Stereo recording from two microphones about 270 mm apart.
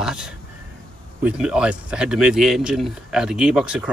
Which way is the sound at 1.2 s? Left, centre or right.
Centre.